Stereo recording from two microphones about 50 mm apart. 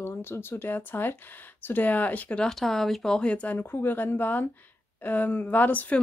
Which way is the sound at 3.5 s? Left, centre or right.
Left.